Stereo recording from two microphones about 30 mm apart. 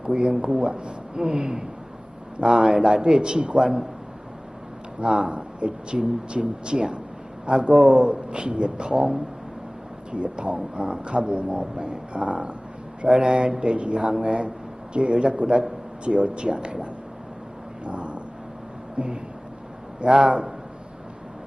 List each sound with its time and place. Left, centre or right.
0.0 s speech: right
1.1 s a man's voice: right
5.0 s a man's voice: right
5.3 s a man's voice: right
13.1 s speech: right
17.8 s vehicle: right
19.0 s speech: right